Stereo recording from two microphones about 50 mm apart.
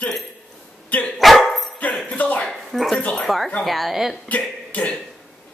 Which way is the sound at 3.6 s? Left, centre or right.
Centre.